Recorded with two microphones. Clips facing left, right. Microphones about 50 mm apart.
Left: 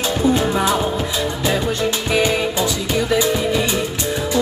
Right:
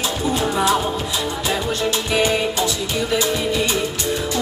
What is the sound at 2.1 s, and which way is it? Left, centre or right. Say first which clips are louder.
Music: left 1 dB; left.